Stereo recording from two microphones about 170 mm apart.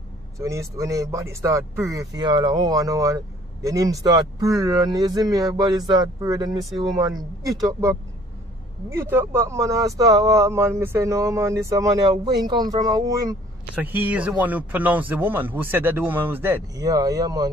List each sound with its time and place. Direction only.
0.4 s speech: 15° right (ahead or behind)
13.7 s speech: 10° right (ahead or behind)